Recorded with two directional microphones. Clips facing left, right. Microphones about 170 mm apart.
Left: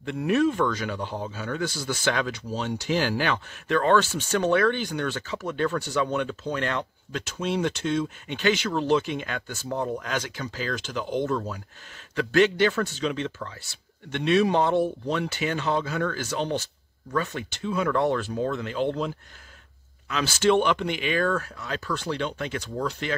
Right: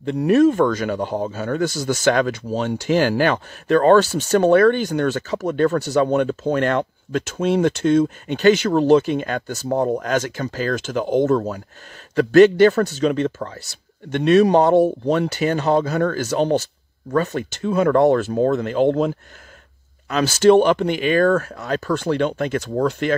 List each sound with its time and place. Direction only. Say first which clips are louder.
0.0 s a man's voice: right 8 dB; 35° right (ahead or behind); by 23.1 s 50° right (ahead or behind)